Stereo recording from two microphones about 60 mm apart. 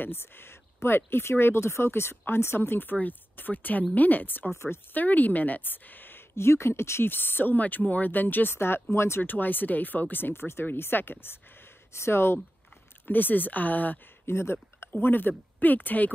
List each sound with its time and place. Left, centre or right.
0.0 s speech: left
9.2 s speech: left
13.0 s speech: left
14.2 s speech: left